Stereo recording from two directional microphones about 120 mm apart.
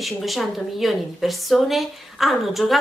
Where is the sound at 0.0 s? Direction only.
Centre (ahead or behind).